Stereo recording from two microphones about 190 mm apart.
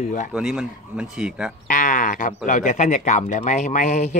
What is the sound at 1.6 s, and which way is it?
Speech, 45° left (ahead or behind).